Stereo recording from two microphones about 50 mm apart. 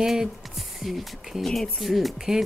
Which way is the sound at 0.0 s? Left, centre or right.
Centre.